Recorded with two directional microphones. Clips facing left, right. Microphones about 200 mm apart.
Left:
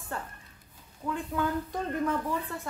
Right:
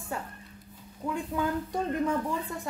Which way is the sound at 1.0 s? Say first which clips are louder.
Right 1 dB; 15° right (ahead or behind).